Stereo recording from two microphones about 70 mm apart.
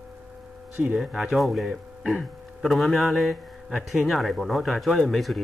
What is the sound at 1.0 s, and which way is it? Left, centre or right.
Speech, centre.